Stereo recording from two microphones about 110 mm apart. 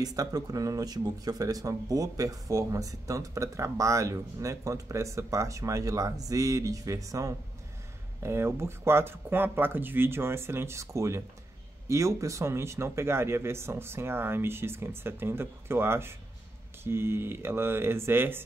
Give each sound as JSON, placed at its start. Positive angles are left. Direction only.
{"t": 0.0, "sound": "speech", "side_deg": -35}